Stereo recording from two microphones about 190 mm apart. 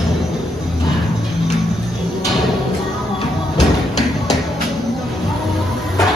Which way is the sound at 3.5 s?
Centre (ahead or behind).